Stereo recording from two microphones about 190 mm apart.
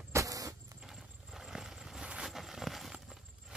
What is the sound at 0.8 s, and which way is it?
Vehicle, centre (ahead or behind).